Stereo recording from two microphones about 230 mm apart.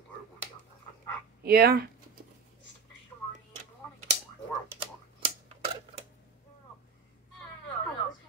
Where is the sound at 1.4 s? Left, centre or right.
Right.